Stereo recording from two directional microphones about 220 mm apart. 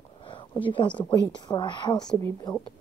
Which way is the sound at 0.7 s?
20° left (ahead or behind).